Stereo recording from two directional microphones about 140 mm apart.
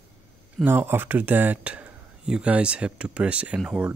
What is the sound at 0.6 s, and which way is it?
Speech, 15° right (ahead or behind).